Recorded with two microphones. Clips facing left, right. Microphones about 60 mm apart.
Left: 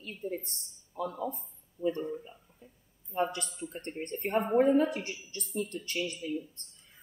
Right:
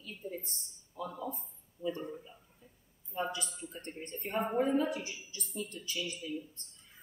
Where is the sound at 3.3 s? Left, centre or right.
Left.